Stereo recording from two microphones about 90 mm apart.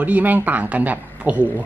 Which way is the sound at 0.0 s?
20° right (ahead or behind).